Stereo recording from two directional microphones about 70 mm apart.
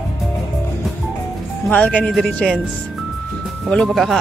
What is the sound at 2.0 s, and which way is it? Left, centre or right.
Speech, centre.